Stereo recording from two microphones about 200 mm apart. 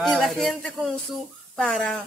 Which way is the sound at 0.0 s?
Centre (ahead or behind).